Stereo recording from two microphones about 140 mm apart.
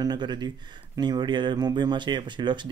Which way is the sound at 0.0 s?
30° right (ahead or behind).